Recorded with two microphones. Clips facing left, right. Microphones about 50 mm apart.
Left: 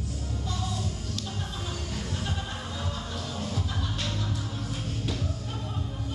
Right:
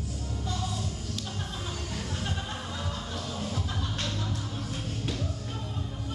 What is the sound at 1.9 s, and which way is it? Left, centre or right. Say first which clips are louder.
Music: even; centre.